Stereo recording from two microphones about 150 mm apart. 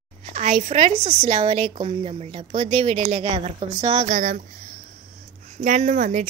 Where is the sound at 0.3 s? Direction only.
50° right (ahead or behind).